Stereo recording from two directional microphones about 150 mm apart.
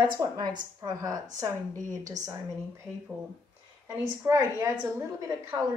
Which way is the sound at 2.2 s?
55° right (ahead or behind).